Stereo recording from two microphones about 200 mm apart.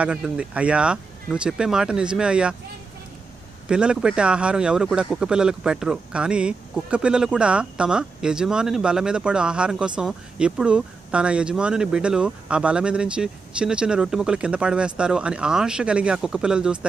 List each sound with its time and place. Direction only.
0.0 s speech: 5° right (ahead or behind)
3.6 s speech: 5° right (ahead or behind)